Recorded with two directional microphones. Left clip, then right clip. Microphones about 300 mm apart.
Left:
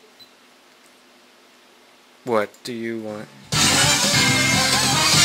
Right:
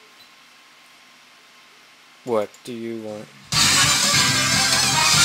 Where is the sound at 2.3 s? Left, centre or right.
Left.